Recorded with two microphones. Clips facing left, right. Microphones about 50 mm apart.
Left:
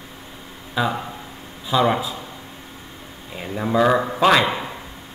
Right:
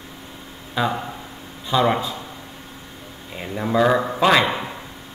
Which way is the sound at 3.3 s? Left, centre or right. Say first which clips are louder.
Even; centre.